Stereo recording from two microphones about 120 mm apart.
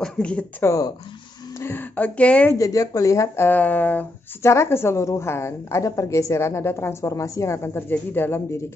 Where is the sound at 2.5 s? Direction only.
30° left (ahead or behind).